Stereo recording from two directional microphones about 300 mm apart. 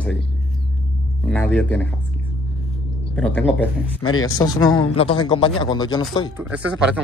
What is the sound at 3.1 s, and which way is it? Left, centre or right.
A man's voice, centre.